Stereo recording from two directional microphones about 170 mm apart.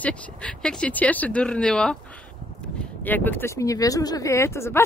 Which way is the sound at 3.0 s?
10° left (ahead or behind).